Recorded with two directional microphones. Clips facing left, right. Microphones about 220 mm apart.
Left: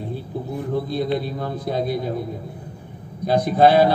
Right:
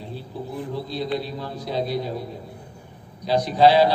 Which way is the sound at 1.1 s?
50° left (ahead or behind).